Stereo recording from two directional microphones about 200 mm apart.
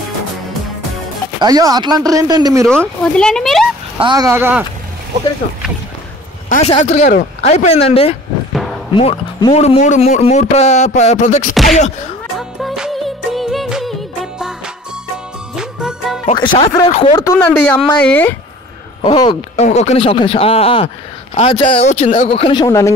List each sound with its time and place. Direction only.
1.4 s speech: 20° right (ahead or behind)
3.0 s speech: 5° left (ahead or behind)
4.0 s speech: 20° right (ahead or behind)
6.5 s speech: 35° left (ahead or behind)
7.5 s speech: 30° left (ahead or behind)
11.5 s speech: centre (ahead or behind)
12.4 s music: centre (ahead or behind)
15.5 s music: 5° right (ahead or behind)
16.3 s speech: 25° left (ahead or behind)
17.2 s speech: 15° left (ahead or behind)
19.0 s speech: 30° left (ahead or behind)